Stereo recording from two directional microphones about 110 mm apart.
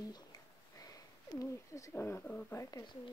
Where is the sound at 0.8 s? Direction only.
30° left (ahead or behind).